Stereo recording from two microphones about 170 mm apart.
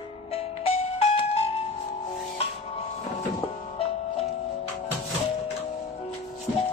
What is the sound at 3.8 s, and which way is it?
Music, 35° left (ahead or behind).